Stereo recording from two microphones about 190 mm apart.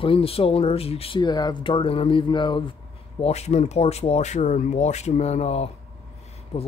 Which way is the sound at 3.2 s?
35° left (ahead or behind).